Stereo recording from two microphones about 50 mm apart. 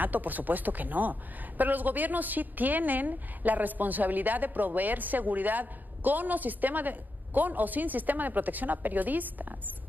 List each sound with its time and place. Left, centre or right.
0.0 s a woman's voice: right